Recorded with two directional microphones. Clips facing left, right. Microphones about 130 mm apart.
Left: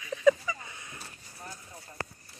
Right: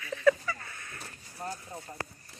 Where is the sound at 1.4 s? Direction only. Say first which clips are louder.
Right 8 dB; 50° right (ahead or behind).